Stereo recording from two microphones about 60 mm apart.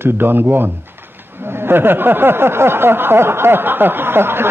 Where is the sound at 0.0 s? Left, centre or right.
Right.